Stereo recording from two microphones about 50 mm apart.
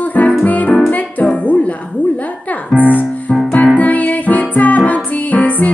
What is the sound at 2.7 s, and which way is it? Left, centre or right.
Music, left.